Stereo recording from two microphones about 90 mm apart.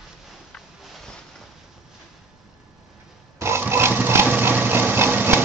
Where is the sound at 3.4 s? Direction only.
25° right (ahead or behind).